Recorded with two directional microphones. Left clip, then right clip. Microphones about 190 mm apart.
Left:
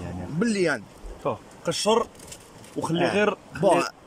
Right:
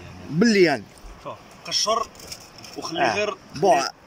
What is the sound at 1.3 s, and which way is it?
Speech, 50° left (ahead or behind).